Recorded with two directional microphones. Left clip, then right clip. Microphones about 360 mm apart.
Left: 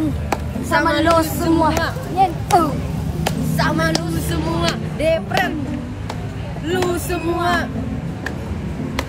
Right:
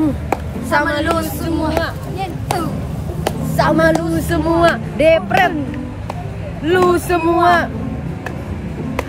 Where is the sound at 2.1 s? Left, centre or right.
Centre.